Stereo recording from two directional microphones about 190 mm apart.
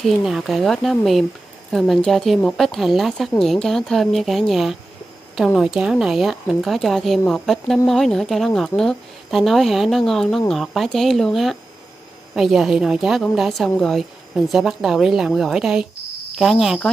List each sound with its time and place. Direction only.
0.0 s speech: centre (ahead or behind)